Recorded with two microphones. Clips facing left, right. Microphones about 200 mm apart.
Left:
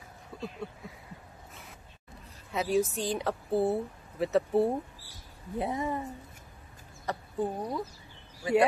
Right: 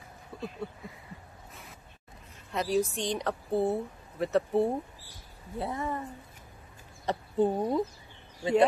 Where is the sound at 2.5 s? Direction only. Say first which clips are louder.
Even; 5° left (ahead or behind).